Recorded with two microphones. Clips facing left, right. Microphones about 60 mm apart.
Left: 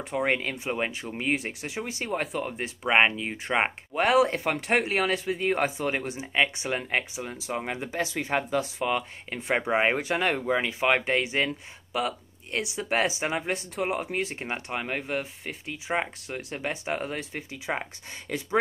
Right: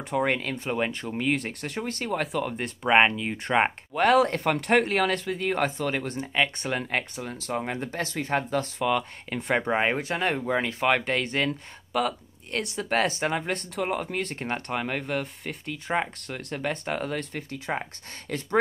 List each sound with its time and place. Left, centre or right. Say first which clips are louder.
0.2 s speech: left 1 dB; centre
9.8 s speech: left 1 dB; left
18.3 s speech: even; left